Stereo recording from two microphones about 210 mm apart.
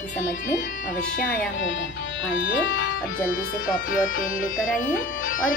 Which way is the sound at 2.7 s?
65° left (ahead or behind).